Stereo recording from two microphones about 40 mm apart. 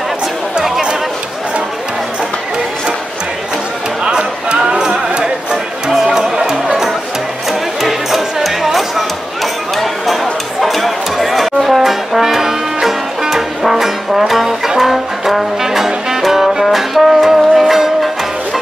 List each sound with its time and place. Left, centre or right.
0.6 s music: centre
4.0 s music: right
7.8 s music: centre
10.6 s music: centre
14.8 s trombone: centre
16.7 s music: centre